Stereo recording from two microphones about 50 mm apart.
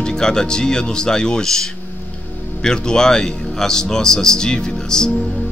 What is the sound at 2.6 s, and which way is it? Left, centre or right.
Speech, centre.